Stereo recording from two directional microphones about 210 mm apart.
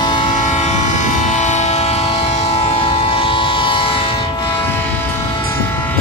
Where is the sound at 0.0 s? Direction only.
20° left (ahead or behind).